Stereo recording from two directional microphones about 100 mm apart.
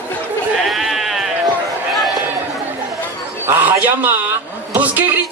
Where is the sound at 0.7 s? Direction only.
Centre (ahead or behind).